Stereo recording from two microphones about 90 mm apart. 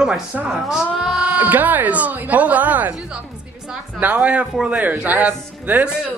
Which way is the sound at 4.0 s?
15° right (ahead or behind).